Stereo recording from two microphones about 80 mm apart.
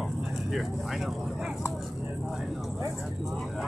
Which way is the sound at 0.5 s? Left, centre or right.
Centre.